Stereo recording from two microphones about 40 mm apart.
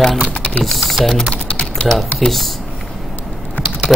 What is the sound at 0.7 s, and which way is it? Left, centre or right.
Speech, centre.